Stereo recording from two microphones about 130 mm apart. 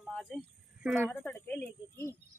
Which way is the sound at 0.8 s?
10° right (ahead or behind).